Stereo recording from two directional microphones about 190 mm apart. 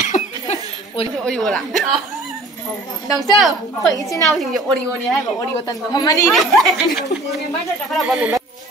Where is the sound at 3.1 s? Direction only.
Centre (ahead or behind).